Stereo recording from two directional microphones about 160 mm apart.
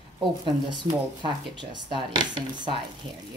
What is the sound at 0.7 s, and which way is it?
A woman's voice, 30° right (ahead or behind).